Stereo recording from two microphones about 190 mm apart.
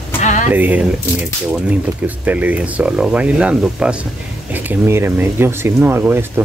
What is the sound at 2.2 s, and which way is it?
Speech, 10° right (ahead or behind).